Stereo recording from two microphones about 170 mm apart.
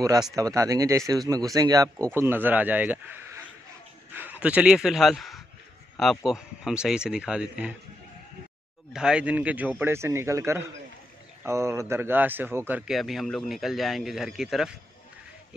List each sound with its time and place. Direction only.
0.3 s a man's voice: 20° right (ahead or behind)
4.1 s a man's voice: 10° right (ahead or behind)
8.9 s a man's voice: 5° right (ahead or behind)